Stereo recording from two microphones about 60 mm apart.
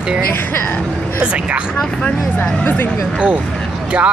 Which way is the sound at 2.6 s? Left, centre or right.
Left.